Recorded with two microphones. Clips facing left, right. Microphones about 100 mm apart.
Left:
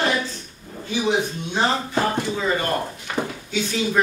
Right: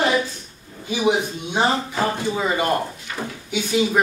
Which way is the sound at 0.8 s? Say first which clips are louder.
Right 2 dB; 15° right (ahead or behind).